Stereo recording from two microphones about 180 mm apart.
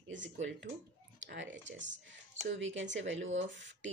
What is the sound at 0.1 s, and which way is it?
Speech, 90° right.